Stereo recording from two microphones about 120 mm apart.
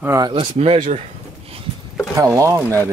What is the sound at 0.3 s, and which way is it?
Speech, 55° right (ahead or behind).